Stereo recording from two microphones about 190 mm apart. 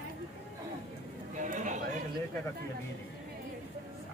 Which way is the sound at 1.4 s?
40° right (ahead or behind).